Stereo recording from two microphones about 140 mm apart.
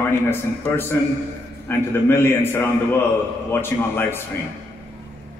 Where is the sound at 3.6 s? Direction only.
15° left (ahead or behind).